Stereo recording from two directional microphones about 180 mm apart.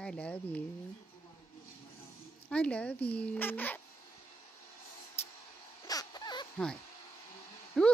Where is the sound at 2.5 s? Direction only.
5° left (ahead or behind).